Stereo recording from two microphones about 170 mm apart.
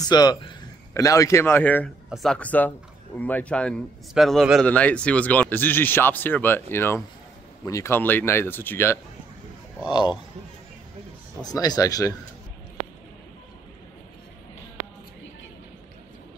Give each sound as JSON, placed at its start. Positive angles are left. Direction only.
{"t": 0.0, "sound": "a man's voice", "side_deg": 25}
{"t": 2.0, "sound": "speech", "side_deg": 0}
{"t": 11.4, "sound": "speech", "side_deg": 20}